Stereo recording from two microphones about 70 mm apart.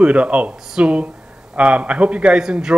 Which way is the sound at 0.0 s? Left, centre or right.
Centre.